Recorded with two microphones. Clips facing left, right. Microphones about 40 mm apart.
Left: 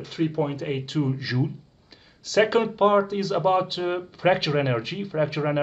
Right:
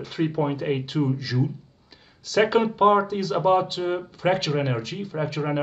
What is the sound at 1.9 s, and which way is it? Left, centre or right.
Speech, centre.